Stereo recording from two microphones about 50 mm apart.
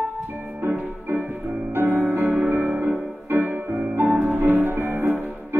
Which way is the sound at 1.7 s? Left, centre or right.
Right.